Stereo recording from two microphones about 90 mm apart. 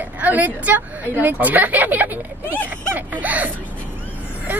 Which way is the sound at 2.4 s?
20° left (ahead or behind).